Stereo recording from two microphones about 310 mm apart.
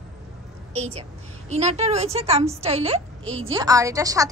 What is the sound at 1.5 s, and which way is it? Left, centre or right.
A woman's voice, right.